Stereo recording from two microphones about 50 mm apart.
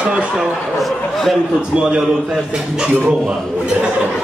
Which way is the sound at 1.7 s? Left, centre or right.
Centre.